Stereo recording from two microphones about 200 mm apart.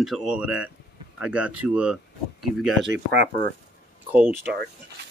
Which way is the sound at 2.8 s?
60° right (ahead or behind).